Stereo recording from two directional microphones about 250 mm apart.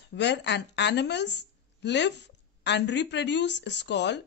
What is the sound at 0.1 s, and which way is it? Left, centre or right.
A woman's voice, left.